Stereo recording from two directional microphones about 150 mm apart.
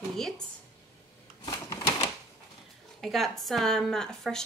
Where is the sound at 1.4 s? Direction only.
25° left (ahead or behind).